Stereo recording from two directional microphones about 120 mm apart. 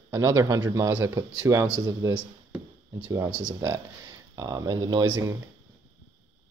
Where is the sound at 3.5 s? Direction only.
30° right (ahead or behind).